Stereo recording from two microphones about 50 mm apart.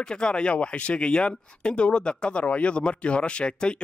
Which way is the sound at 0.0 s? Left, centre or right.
Centre.